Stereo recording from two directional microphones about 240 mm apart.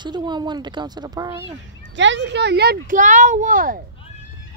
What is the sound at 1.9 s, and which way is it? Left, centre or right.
Speech, right.